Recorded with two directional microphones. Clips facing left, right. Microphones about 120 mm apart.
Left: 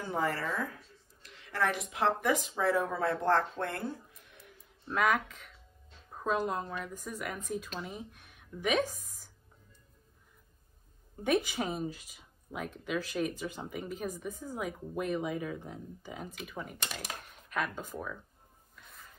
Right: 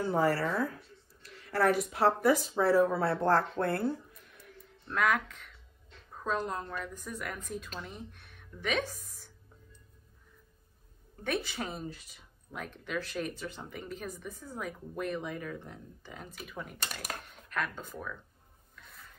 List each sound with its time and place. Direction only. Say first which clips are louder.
0.0 s a woman's voice: right 5 dB; 40° right (ahead or behind)
4.8 s a woman's voice: even; 5° left (ahead or behind)
11.4 s a woman's voice: left 4 dB; 10° left (ahead or behind)
18.8 s a sound: even; centre (ahead or behind)